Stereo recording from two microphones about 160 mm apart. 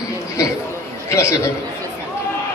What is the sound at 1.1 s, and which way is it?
Speech, 15° left (ahead or behind).